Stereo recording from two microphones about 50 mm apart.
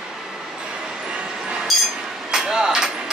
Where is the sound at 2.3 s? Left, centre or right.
Centre.